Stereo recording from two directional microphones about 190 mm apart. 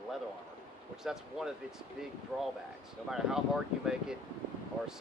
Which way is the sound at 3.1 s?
Centre (ahead or behind).